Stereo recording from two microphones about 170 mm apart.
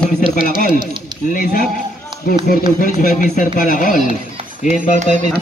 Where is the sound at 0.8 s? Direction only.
25° right (ahead or behind).